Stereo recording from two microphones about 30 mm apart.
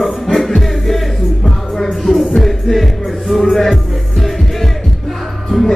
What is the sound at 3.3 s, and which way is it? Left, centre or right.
Music, centre.